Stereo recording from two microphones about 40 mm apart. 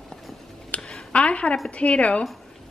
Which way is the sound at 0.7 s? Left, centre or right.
Left.